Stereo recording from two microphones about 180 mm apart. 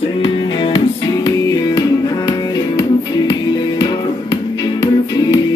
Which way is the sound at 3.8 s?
25° left (ahead or behind).